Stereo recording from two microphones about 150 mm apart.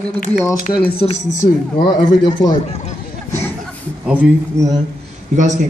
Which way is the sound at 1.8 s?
30° left (ahead or behind).